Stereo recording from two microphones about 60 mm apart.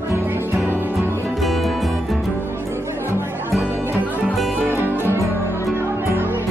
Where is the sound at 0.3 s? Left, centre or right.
Right.